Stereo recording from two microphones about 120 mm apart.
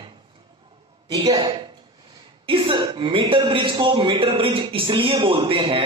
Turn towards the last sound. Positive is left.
turn(degrees=-40)  # may be behind; listen again after turning